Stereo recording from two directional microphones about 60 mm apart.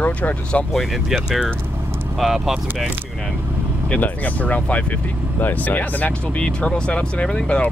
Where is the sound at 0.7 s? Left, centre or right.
Centre.